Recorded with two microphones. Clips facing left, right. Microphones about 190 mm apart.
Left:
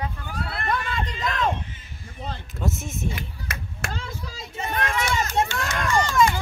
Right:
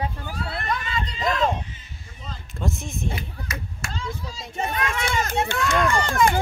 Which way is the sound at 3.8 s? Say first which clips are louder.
Even; 55° left (ahead or behind).